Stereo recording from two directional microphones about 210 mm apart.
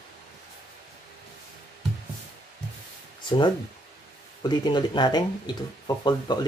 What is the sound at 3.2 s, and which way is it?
Speech, 20° left (ahead or behind).